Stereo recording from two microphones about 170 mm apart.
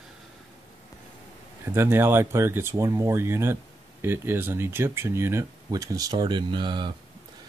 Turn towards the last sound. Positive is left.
turn(degrees=-25)  # may be behind; listen again after turning